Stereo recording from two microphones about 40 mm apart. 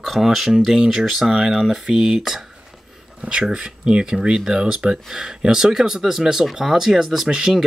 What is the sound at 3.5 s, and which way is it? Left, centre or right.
Speech, right.